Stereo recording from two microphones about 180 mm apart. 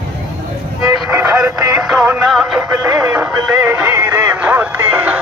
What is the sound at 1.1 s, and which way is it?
Music, 15° right (ahead or behind).